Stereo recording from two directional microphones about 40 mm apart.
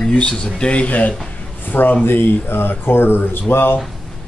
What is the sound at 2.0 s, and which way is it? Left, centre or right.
Speech, left.